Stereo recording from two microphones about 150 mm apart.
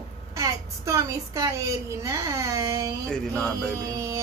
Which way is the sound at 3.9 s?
20° right (ahead or behind).